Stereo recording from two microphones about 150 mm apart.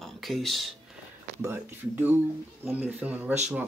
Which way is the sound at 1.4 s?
15° right (ahead or behind).